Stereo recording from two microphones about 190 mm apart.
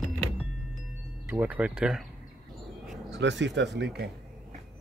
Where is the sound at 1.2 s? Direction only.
5° right (ahead or behind).